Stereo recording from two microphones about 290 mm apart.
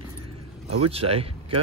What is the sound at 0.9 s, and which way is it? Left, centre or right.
Speech, centre.